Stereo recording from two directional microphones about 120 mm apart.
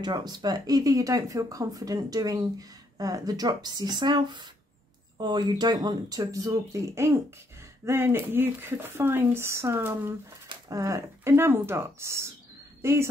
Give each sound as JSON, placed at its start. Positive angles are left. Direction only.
{"t": 0.0, "sound": "speech", "side_deg": -35}